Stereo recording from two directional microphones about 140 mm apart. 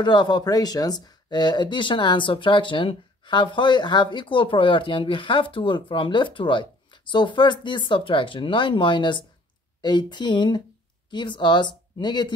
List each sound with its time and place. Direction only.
0.0 s speech: 30° left (ahead or behind)